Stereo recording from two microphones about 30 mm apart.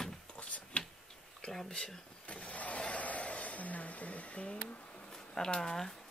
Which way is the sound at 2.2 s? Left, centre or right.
Left.